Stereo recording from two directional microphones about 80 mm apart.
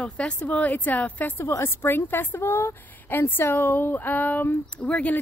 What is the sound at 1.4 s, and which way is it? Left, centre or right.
Speech, left.